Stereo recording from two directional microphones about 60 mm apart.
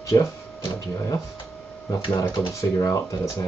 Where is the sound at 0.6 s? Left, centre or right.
Left.